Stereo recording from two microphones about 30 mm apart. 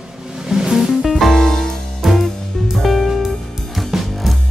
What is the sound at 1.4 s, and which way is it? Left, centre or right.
Music, centre.